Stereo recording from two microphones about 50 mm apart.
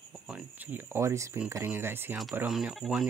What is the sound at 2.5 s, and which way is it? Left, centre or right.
Speech, centre.